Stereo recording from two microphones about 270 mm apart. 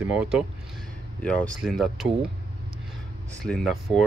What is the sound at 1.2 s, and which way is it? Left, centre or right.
Speech, centre.